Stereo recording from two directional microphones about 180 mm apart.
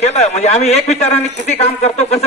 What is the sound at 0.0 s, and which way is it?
A man's voice, 40° left (ahead or behind).